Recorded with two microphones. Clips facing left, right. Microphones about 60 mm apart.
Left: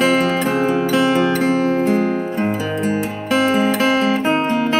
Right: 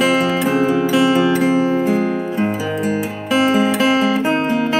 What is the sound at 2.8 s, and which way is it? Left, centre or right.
Music, centre.